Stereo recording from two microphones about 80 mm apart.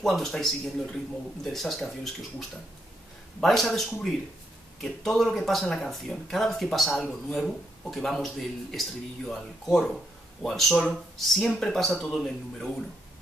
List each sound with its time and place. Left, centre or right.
0.0 s speech: centre
3.3 s speech: centre